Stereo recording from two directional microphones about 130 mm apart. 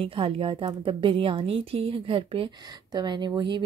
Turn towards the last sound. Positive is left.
turn(degrees=-35)  # may be behind; listen again after turning